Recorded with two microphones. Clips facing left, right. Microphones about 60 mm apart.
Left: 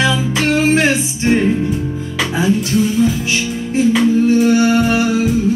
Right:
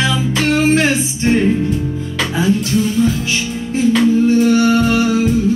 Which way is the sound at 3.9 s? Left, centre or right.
Centre.